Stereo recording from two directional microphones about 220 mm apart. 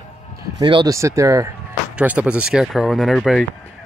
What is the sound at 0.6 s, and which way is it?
Speech, 20° right (ahead or behind).